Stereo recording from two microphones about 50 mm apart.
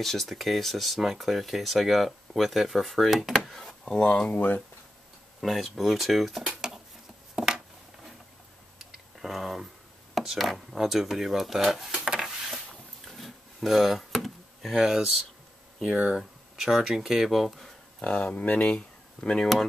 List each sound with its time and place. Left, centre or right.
0.0 s speech: centre
3.4 s a sound: centre
3.8 s speech: left
5.4 s speech: centre
7.3 s a sound: centre
8.7 s clicking: centre
10.1 s speech: centre
12.2 s a sound: centre
15.8 s speech: centre
18.0 s speech: left